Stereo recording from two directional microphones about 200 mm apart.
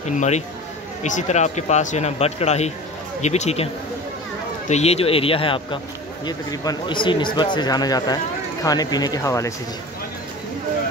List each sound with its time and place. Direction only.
0.0 s a man's voice: 35° left (ahead or behind)
4.6 s speech: 35° left (ahead or behind); by 9.5 s 15° left (ahead or behind)